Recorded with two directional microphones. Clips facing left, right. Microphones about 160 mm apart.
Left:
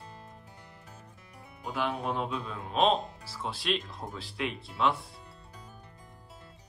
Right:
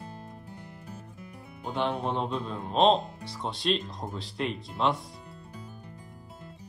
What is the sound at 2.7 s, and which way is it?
Speech, 30° right (ahead or behind).